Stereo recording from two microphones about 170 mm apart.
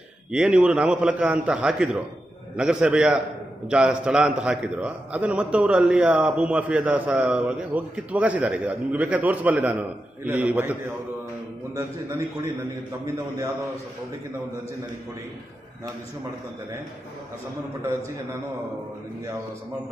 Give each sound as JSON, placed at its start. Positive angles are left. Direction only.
{"t": 0.3, "sound": "a man's voice", "side_deg": -5}
{"t": 12.9, "sound": "a man's voice", "side_deg": -20}